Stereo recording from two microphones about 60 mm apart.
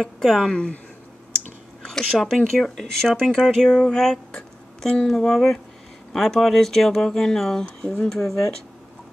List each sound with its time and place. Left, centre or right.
0.0 s speech: centre
0.5 s speech: centre
1.9 s speech: centre